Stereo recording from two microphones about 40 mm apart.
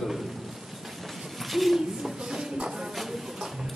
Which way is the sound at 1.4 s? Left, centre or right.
Centre.